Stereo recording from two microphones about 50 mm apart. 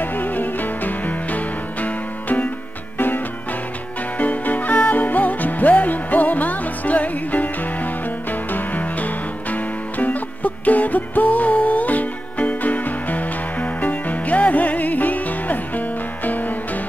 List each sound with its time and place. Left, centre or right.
0.0 s music: left
4.2 s music: left